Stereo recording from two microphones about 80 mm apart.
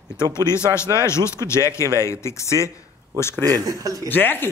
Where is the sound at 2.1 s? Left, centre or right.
Left.